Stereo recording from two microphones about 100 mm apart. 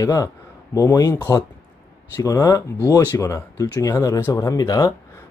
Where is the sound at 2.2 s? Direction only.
40° left (ahead or behind).